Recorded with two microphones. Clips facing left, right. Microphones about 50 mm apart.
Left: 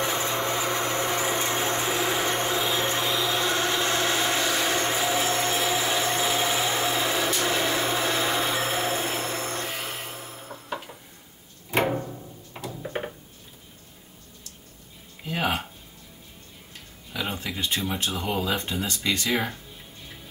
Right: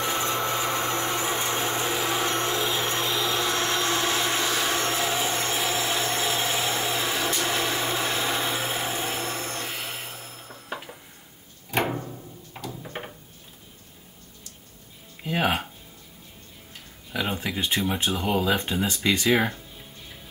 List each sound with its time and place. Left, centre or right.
0.0 s a sound: centre
2.0 s vehicle: centre
2.6 s vacuum cleaner: centre
4.8 s vacuum cleaner: centre
5.2 s vacuum cleaner: centre
7.3 s blender: centre
9.4 s a sound: centre
10.7 s dishes: centre
11.9 s music: centre
15.2 s a sound: centre
17.1 s a sound: centre
17.7 s speech: centre